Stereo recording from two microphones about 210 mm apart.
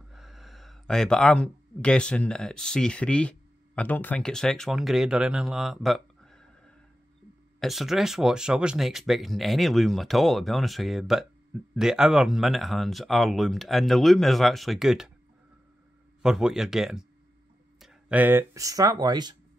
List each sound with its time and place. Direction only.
0.1 s speech: centre (ahead or behind)
7.6 s speech: centre (ahead or behind)
16.2 s speech: 5° right (ahead or behind); by 19.3 s 20° right (ahead or behind)